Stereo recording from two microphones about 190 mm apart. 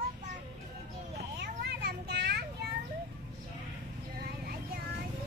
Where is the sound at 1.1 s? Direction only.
60° right (ahead or behind).